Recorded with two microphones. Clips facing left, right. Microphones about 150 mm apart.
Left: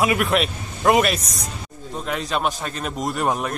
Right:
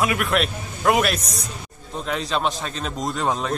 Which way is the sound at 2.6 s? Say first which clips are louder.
Left 1 dB; 5° left (ahead or behind).